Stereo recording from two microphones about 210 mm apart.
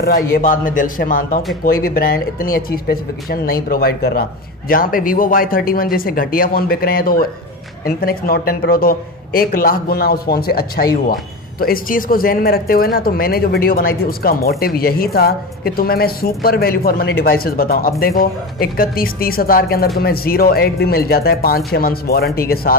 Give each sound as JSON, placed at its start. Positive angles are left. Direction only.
{"t": 0.0, "sound": "a man's voice", "side_deg": 45}